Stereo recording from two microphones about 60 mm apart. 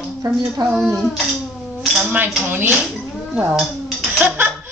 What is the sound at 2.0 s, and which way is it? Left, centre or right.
Cutlery, right.